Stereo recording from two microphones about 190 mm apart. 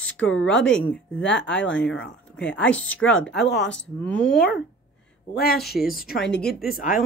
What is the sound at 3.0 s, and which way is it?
Speech, 90° left.